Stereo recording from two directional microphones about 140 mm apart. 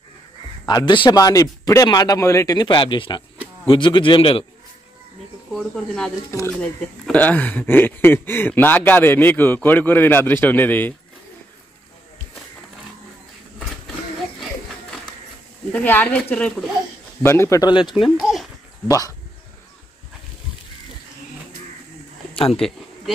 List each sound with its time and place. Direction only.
0.7 s speech: 30° left (ahead or behind)
5.5 s speech: 5° left (ahead or behind)
15.7 s a man's voice: 10° left (ahead or behind); by 17.9 s 35° left (ahead or behind)
18.2 s speech: centre (ahead or behind)
18.9 s a man's voice: 25° left (ahead or behind)
22.5 s speech: centre (ahead or behind)